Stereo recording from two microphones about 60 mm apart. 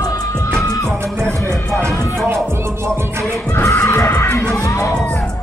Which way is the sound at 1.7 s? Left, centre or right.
Right.